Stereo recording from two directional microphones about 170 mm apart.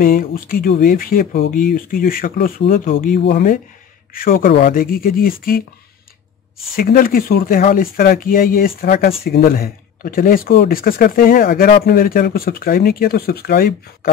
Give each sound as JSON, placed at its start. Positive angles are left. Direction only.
{"t": 0.0, "sound": "speech", "side_deg": 55}
{"t": 4.1, "sound": "speech", "side_deg": 60}
{"t": 6.7, "sound": "speech", "side_deg": 60}